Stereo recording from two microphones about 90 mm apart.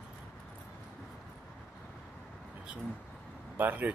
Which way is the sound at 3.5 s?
20° right (ahead or behind).